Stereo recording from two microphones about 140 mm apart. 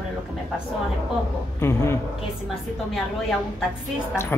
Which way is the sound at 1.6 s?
20° left (ahead or behind).